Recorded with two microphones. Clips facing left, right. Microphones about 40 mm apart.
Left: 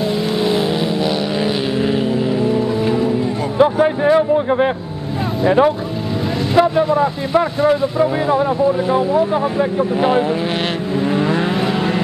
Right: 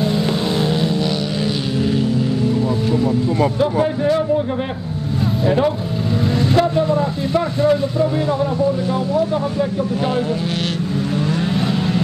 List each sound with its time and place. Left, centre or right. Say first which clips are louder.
2.4 s music: left 2 dB; centre
3.8 s speech: left 4 dB; left